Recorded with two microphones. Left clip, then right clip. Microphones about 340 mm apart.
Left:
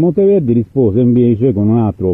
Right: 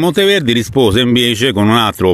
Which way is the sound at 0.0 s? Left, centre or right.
Right.